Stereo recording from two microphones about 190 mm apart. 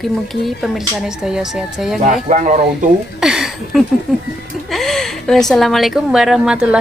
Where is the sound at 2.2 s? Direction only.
40° right (ahead or behind).